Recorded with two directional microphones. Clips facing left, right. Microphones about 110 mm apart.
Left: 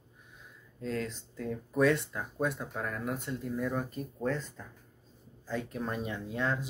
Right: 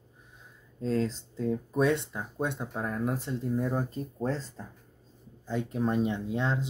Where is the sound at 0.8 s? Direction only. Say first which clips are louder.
Right 6 dB; 30° right (ahead or behind).